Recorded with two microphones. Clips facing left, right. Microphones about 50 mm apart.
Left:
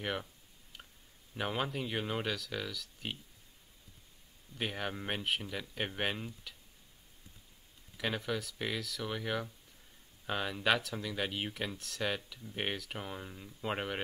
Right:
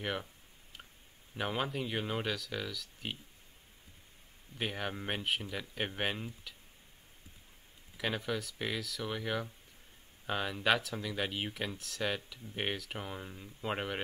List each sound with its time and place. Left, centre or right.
0.0 s speech: centre
1.3 s speech: centre
4.6 s speech: centre
8.0 s speech: centre